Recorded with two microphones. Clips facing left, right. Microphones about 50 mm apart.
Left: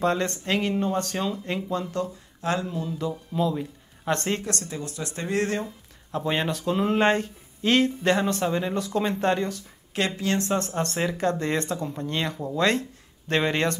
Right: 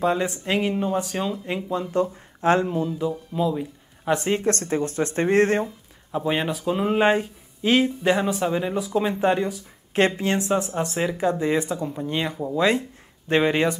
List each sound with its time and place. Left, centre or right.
0.0 s speech: centre
2.4 s speech: right
2.9 s speech: centre
4.4 s speech: right
6.1 s speech: centre
9.9 s speech: right
10.3 s speech: centre